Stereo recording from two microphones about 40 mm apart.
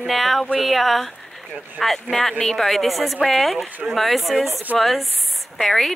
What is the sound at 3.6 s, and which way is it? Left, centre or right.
Speech, right.